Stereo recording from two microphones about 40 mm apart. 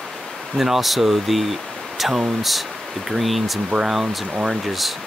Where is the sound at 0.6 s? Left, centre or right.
Centre.